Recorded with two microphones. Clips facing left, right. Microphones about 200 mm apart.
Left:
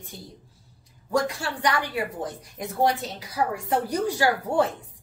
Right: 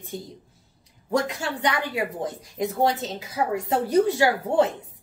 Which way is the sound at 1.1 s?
20° right (ahead or behind).